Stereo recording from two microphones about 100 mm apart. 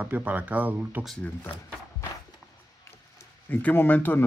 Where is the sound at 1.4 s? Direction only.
25° left (ahead or behind).